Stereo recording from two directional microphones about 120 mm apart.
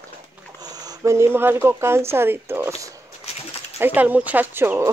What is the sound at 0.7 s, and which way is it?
Speech, 35° right (ahead or behind).